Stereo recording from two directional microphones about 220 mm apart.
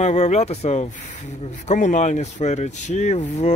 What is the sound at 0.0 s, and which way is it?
Speech, 30° left (ahead or behind).